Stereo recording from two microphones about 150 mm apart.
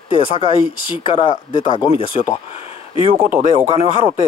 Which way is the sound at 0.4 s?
40° left (ahead or behind).